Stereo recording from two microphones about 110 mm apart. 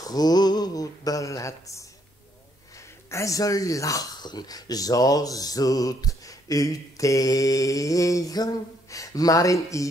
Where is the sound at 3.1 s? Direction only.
30° left (ahead or behind).